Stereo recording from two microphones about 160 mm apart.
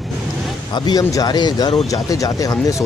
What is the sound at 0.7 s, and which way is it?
Speech, 25° left (ahead or behind).